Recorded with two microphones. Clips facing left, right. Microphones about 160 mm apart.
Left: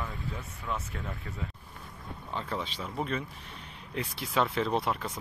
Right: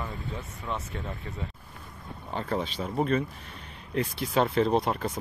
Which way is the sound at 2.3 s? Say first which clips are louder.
Right 5 dB; 45° right (ahead or behind).